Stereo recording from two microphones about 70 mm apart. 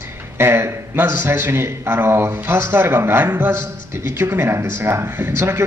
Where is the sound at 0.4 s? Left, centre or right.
Right.